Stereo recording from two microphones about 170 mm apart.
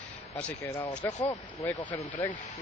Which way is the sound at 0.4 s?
10° left (ahead or behind).